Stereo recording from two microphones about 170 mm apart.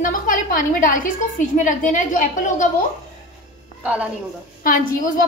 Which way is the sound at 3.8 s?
10° right (ahead or behind).